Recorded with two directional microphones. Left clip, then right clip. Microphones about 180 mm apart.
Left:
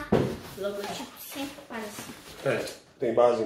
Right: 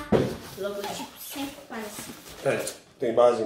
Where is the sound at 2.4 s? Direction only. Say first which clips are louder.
Right 2 dB; centre (ahead or behind).